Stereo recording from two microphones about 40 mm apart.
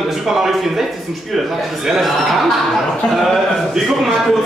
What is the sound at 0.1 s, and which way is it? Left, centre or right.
Speech, centre.